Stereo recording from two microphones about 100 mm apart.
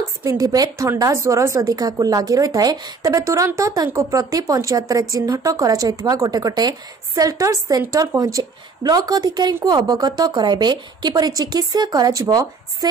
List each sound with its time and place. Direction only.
0.2 s a woman's voice: 35° right (ahead or behind)